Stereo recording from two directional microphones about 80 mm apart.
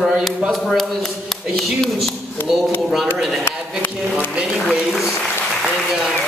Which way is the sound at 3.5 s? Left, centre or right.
Left.